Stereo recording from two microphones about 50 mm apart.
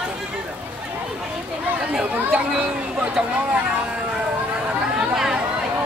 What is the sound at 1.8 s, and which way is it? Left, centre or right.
Chatter, centre.